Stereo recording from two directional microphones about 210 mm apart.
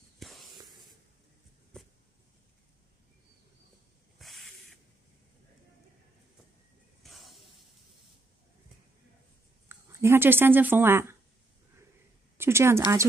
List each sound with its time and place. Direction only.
0.2 s spray: centre (ahead or behind)
1.7 s a sound: 5° left (ahead or behind)
4.2 s spray: centre (ahead or behind)
7.0 s a sound: centre (ahead or behind)
9.7 s speech: 10° right (ahead or behind)
12.4 s speech: 10° right (ahead or behind)